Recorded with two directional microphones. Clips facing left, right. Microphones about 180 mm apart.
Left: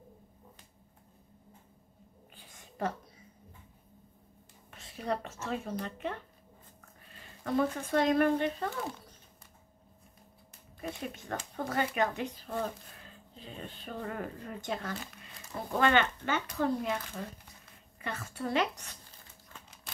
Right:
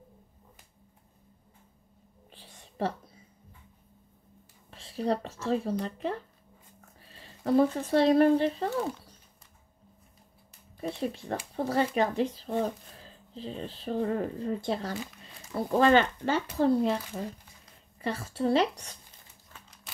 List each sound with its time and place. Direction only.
2.3 s whispering: 30° right (ahead or behind)
4.6 s speech: 30° right (ahead or behind)
10.8 s speech: 30° right (ahead or behind)